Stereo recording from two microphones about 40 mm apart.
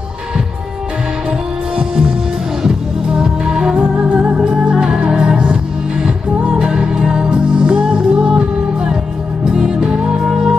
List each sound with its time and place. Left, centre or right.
1.8 s music: centre
4.4 s music: centre